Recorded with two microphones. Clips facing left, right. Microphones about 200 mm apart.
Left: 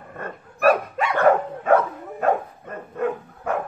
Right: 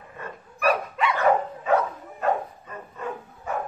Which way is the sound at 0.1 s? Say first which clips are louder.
Left 5 dB; 50° left (ahead or behind).